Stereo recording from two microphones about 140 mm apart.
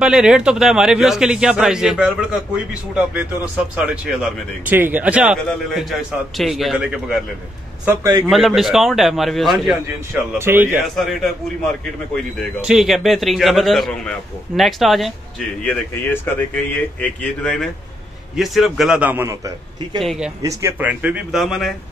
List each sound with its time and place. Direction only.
0.0 s a man's voice: 5° right (ahead or behind)
7.8 s a man's voice: 15° right (ahead or behind)
8.3 s a man's voice: centre (ahead or behind)
10.3 s a man's voice: 15° right (ahead or behind)
11.0 s a man's voice: centre (ahead or behind)
12.6 s a man's voice: centre (ahead or behind)
15.6 s a man's voice: 10° left (ahead or behind); by 20.0 s 20° right (ahead or behind)
20.0 s a man's voice: centre (ahead or behind)
20.4 s a man's voice: 15° right (ahead or behind)